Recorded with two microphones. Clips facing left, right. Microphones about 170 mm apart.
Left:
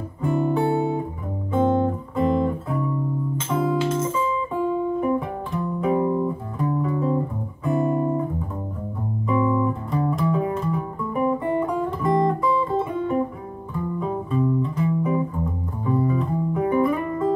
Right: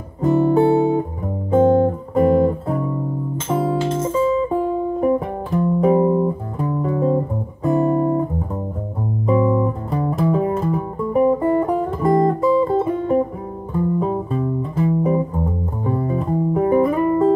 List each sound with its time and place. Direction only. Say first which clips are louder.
0.2 s guitar: right 7 dB; 40° right (ahead or behind)
1.5 s guitar: right 6 dB; 45° right (ahead or behind)
3.4 s music: right 3 dB; 45° right (ahead or behind)
9.2 s music: right 4 dB; 40° right (ahead or behind)
10.2 s guitar: right 4 dB; 40° right (ahead or behind)
13.9 s music: right 3 dB; 40° right (ahead or behind)